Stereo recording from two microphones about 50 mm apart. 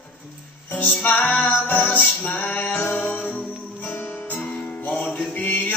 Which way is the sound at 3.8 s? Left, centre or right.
Left.